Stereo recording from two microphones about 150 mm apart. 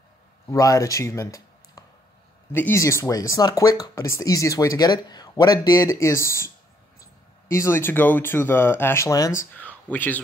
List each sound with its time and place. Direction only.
0.5 s speech: 20° left (ahead or behind)